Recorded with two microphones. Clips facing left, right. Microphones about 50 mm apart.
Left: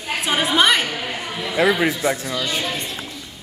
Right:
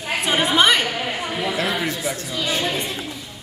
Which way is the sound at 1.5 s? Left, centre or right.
Centre.